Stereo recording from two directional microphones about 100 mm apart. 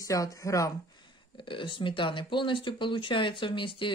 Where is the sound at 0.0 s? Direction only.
35° left (ahead or behind).